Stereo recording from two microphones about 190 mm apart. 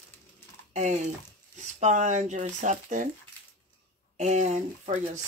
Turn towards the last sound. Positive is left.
turn(degrees=-40)  # may be behind; listen again after turning